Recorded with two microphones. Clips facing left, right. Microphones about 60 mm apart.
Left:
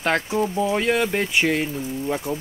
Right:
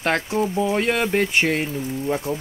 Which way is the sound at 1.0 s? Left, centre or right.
Centre.